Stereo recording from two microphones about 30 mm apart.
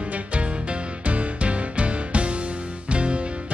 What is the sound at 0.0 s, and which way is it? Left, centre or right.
Music, right.